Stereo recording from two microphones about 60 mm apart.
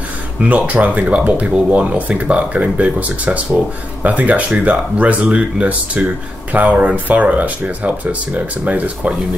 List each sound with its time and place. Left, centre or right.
0.4 s speech: right